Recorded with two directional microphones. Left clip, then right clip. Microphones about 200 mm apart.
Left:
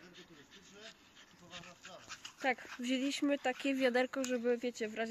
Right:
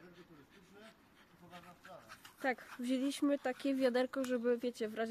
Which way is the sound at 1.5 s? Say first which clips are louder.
Left 3 dB; 55° right (ahead or behind).